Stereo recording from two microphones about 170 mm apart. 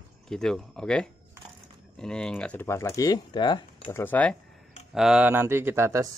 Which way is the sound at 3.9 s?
10° left (ahead or behind).